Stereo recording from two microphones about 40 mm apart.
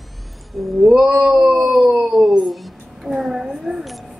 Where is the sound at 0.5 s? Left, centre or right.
Centre.